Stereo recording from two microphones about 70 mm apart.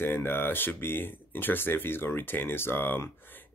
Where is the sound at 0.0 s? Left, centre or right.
Left.